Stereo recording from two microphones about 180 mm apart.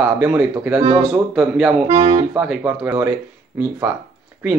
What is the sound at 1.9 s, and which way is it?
Speech, 25° right (ahead or behind).